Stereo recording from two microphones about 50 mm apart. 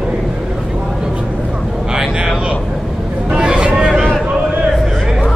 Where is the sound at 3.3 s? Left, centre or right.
Centre.